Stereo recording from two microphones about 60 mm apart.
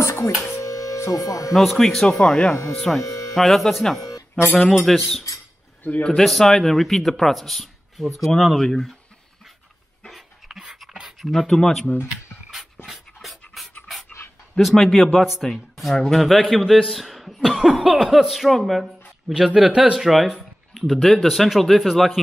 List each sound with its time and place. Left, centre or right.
0.0 s music: left
0.6 s music: left
1.5 s speech: centre
3.0 s speech: left
3.3 s a man's voice: centre
10.0 s dog: centre
10.9 s a sound: centre
11.4 s speech: centre
12.8 s dog: centre
14.6 s a man's voice: centre
17.6 s a sound: centre
18.1 s a man's voice: centre
19.7 s a sound: centre
20.1 s a man's voice: centre